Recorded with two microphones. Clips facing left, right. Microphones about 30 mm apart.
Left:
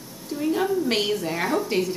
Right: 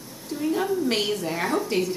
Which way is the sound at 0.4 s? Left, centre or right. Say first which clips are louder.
Left 1 dB; centre.